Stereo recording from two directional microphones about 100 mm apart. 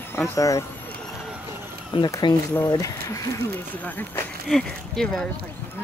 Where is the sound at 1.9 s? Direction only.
55° left (ahead or behind).